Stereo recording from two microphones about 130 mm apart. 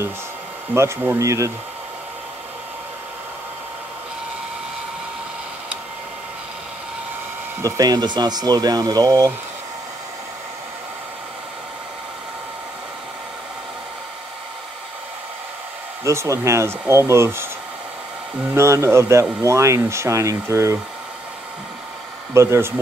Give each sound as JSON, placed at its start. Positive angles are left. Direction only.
{"t": 0.7, "sound": "speech", "side_deg": -20}
{"t": 7.6, "sound": "speech", "side_deg": -30}
{"t": 16.0, "sound": "speech", "side_deg": -20}
{"t": 18.5, "sound": "speech", "side_deg": -20}
{"t": 22.3, "sound": "speech", "side_deg": -20}